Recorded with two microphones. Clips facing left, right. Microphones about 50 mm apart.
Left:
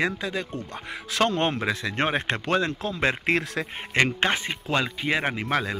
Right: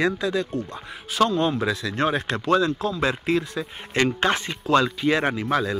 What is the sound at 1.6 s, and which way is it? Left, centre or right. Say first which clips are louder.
Speech: right 2 dB; left.